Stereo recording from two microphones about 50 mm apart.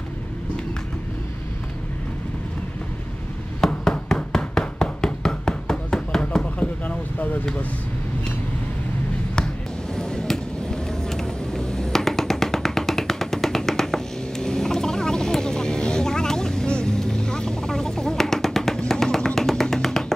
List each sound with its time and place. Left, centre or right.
3.6 s a sound: centre
6.6 s basketball bounce: left
9.9 s vehicle: centre
18.9 s music: centre